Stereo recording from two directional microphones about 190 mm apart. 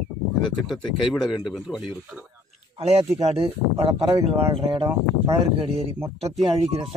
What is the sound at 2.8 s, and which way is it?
Speech, 35° right (ahead or behind).